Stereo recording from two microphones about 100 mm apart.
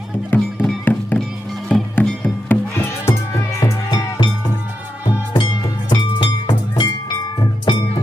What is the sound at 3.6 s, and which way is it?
Music, 35° left (ahead or behind).